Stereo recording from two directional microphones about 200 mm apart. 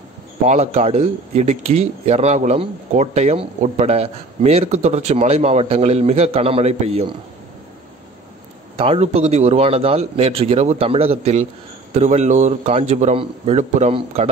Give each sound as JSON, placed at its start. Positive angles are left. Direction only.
{"t": 0.5, "sound": "speech", "side_deg": -35}
{"t": 8.7, "sound": "speech", "side_deg": -30}